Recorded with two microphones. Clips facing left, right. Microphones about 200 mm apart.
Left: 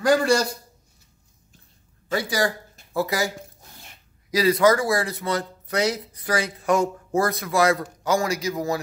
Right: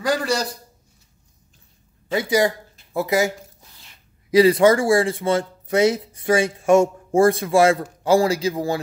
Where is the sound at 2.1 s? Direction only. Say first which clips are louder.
Right 5 dB; 20° right (ahead or behind).